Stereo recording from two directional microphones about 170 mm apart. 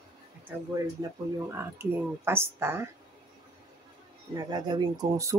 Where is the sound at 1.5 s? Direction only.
15° right (ahead or behind).